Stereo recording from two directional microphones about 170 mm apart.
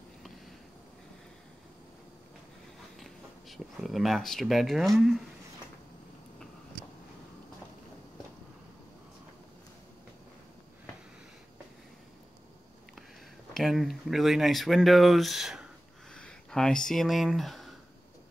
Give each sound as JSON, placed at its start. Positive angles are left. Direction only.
{"t": 3.0, "sound": "speech", "side_deg": 0}
{"t": 13.5, "sound": "speech", "side_deg": 0}